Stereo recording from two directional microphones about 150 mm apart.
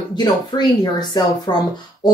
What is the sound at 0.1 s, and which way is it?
Speech, 30° left (ahead or behind).